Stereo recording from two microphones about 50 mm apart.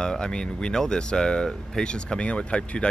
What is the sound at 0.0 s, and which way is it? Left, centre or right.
Speech, centre.